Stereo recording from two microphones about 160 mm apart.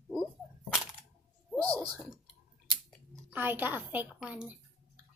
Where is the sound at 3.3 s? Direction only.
10° right (ahead or behind).